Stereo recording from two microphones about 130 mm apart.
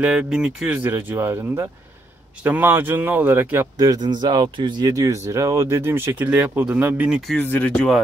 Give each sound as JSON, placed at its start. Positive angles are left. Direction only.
{"t": 0.0, "sound": "speech", "side_deg": -10}
{"t": 3.7, "sound": "speech", "side_deg": -30}
{"t": 7.3, "sound": "speech", "side_deg": 15}